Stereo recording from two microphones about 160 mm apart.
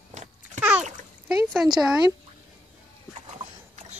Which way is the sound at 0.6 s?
10° right (ahead or behind).